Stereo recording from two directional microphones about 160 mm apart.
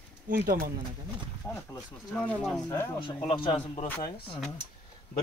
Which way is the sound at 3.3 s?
30° left (ahead or behind).